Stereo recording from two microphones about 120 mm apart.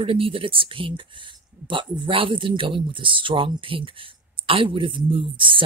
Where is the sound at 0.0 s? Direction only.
50° right (ahead or behind).